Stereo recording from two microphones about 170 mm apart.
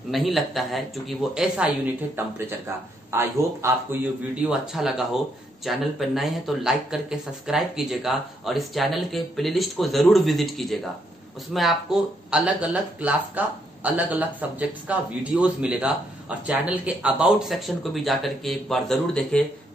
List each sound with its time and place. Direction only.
0.1 s a man's voice: centre (ahead or behind)